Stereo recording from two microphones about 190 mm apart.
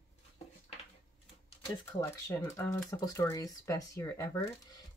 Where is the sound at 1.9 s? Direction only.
15° left (ahead or behind).